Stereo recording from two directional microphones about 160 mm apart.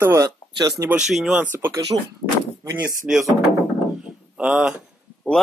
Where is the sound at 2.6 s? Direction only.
15° right (ahead or behind).